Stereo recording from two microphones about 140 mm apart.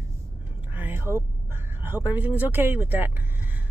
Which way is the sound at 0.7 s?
15° right (ahead or behind).